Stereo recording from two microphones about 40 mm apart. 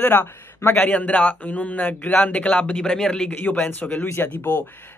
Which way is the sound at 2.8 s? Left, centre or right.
Centre.